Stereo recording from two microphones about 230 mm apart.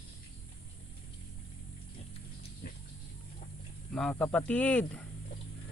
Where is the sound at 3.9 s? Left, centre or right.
Centre.